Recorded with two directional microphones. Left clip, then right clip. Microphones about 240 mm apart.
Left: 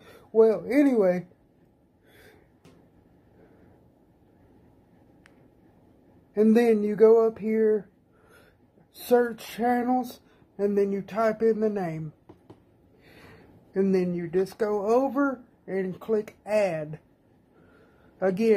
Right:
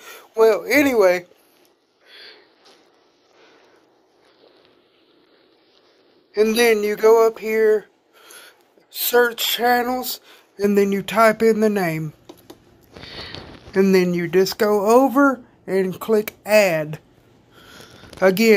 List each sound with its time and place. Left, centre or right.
0.7 s speech: right
6.3 s speech: right
9.2 s speech: right
13.7 s speech: right
18.2 s speech: right